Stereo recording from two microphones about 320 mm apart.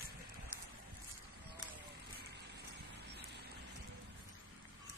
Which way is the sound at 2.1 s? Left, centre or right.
Right.